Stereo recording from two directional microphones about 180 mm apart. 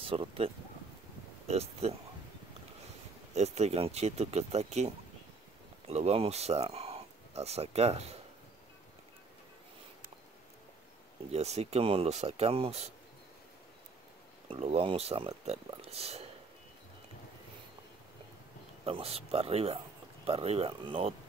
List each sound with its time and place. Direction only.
0.0 s speech: 30° right (ahead or behind)
1.5 s speech: 35° right (ahead or behind)
3.3 s speech: 40° right (ahead or behind)
11.3 s speech: 35° right (ahead or behind)
14.5 s speech: 30° right (ahead or behind)
18.9 s speech: 35° right (ahead or behind)